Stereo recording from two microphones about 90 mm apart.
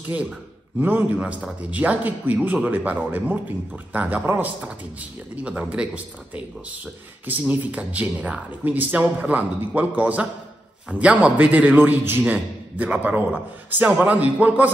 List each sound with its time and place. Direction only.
0.7 s a man's voice: 25° right (ahead or behind)
1.1 s speech: 10° right (ahead or behind)
5.3 s speech: 10° right (ahead or behind)
7.2 s speech: 15° right (ahead or behind)